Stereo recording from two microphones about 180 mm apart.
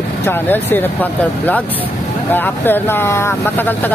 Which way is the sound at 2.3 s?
10° left (ahead or behind).